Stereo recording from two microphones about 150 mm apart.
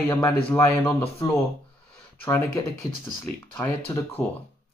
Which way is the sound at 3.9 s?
20° left (ahead or behind).